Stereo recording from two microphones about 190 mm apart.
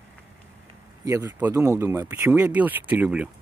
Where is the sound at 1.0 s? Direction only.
10° right (ahead or behind).